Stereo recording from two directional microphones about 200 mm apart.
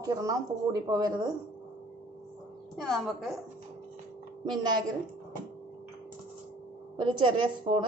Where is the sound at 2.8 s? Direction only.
Centre (ahead or behind).